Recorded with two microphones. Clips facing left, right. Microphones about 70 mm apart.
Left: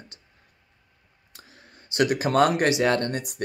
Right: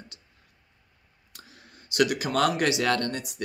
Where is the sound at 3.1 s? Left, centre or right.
Left.